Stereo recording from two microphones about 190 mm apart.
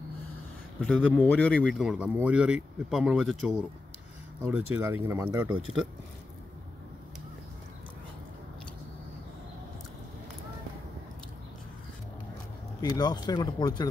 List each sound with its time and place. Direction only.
0.7 s speech: 5° left (ahead or behind); by 5.6 s 10° right (ahead or behind)
12.9 s speech: 20° left (ahead or behind)